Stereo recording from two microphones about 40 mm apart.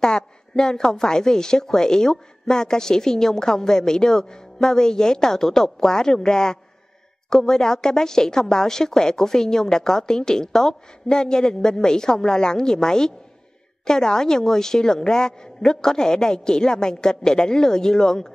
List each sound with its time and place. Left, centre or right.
0.0 s a woman's voice: centre